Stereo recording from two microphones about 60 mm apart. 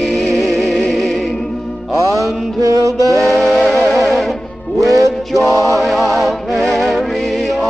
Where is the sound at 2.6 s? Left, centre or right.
Right.